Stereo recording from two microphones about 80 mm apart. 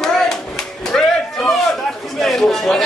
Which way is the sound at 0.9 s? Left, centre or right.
Centre.